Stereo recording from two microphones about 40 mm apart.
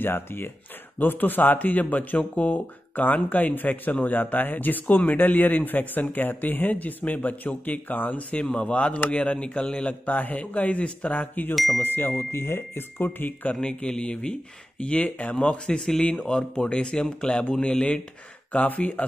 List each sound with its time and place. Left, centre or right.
0.0 s speech: left
0.9 s speech: left
8.4 s speech: left
10.0 s speech: left
11.5 s speech: centre
11.8 s speech: left
13.5 s speech: left
18.5 s speech: left